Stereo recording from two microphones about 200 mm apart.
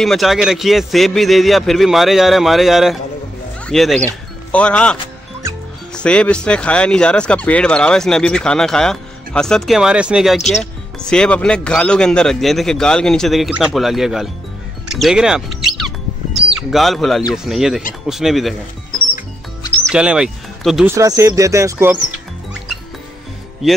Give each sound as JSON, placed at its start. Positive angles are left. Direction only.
{"t": 0.0, "sound": "speech", "side_deg": 0}
{"t": 5.9, "sound": "speech", "side_deg": 5}
{"t": 14.9, "sound": "music", "side_deg": 0}
{"t": 16.4, "sound": "speech", "side_deg": 0}
{"t": 19.9, "sound": "speech", "side_deg": -5}
{"t": 20.9, "sound": "speech", "side_deg": -15}